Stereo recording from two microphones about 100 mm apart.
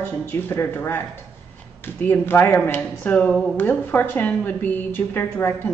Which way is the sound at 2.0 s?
20° left (ahead or behind).